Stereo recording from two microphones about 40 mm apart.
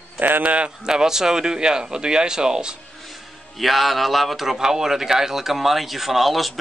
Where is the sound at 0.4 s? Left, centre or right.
Right.